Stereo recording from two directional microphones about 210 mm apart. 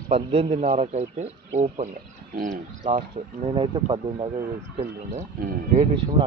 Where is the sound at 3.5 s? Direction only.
25° right (ahead or behind).